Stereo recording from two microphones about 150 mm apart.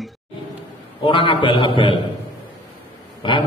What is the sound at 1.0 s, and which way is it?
Speech, 35° left (ahead or behind).